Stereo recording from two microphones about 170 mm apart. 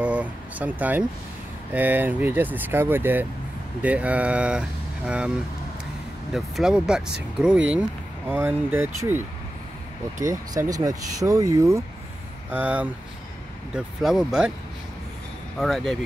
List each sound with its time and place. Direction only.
0.0 s a sound: 5° right (ahead or behind)
1.7 s speech: 10° right (ahead or behind)
6.3 s speech: 5° right (ahead or behind)
10.2 s speech: 20° right (ahead or behind); by 14.5 s centre (ahead or behind)
15.6 s speech: centre (ahead or behind)